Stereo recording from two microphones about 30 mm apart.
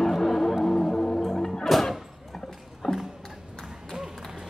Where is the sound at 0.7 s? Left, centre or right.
Left.